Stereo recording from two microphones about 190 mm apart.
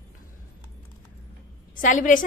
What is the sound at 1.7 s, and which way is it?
Speech, 45° left (ahead or behind).